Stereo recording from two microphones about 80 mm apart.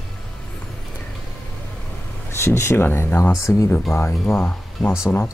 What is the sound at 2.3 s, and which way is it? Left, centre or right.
Speech, left.